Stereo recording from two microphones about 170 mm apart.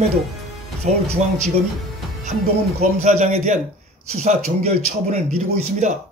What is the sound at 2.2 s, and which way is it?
Speech, 45° right (ahead or behind).